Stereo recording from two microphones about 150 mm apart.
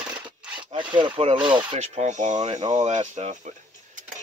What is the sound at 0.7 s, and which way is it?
Rub, 30° right (ahead or behind).